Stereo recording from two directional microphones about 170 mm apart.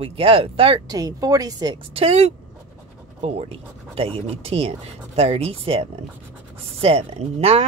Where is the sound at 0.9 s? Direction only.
20° right (ahead or behind).